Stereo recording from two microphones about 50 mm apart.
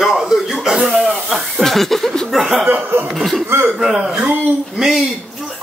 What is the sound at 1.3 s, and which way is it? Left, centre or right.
Speech, centre.